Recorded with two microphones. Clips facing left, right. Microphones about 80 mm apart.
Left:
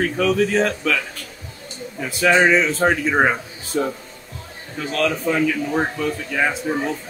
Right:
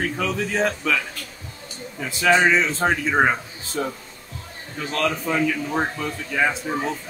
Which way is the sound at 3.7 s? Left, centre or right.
Centre.